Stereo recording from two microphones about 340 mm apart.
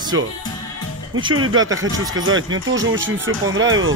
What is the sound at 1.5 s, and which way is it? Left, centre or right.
Speech, centre.